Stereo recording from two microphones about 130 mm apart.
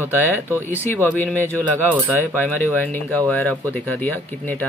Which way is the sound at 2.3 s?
15° left (ahead or behind).